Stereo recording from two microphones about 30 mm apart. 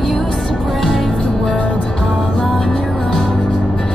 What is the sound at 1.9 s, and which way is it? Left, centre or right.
Music, left.